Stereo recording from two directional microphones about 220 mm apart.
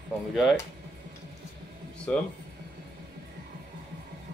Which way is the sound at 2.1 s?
5° left (ahead or behind).